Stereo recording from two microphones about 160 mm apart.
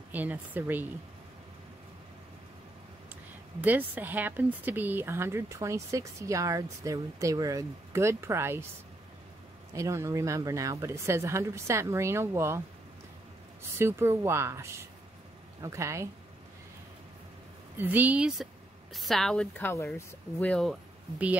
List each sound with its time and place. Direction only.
0.1 s speech: 10° right (ahead or behind)
3.6 s speech: 10° right (ahead or behind)
9.8 s speech: 15° right (ahead or behind)
17.7 s a woman's voice: 10° right (ahead or behind); by 19.7 s 5° left (ahead or behind)
19.7 s speech: 15° left (ahead or behind)